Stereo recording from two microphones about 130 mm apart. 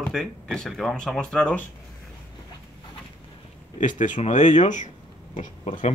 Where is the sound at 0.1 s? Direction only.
5° left (ahead or behind).